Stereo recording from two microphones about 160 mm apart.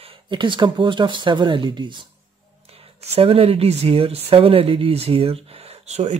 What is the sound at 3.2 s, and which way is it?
Speech, 35° right (ahead or behind).